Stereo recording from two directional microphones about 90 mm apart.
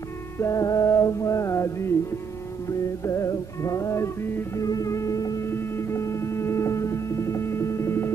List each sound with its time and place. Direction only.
0.4 s music: 40° left (ahead or behind)
3.1 s music: 35° left (ahead or behind)